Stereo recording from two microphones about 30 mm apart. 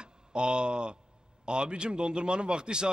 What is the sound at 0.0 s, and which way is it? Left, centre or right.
A man's voice, right.